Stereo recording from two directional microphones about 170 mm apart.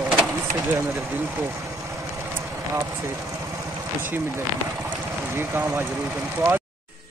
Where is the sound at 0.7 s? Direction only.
10° right (ahead or behind).